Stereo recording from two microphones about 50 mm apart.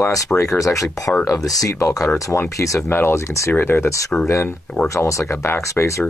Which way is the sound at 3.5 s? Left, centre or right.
Left.